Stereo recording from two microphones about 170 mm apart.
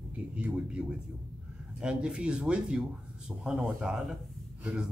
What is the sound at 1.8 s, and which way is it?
A man's voice, 5° right (ahead or behind).